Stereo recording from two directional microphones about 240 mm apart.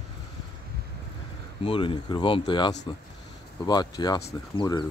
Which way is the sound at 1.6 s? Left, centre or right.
Left.